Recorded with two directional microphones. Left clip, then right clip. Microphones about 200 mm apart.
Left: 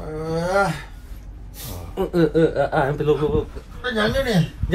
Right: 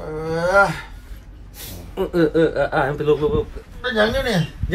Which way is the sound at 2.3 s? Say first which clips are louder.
Right 1 dB; centre (ahead or behind).